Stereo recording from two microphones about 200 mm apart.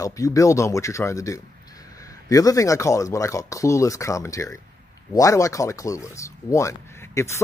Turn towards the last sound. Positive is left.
turn(degrees=15)  # may be behind; listen again after turning